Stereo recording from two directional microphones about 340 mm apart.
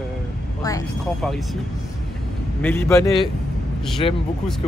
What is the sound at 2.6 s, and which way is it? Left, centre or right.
Speech, centre.